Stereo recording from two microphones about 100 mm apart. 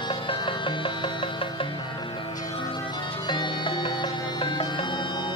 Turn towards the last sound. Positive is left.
turn(degrees=55)  # may be behind; listen again after turning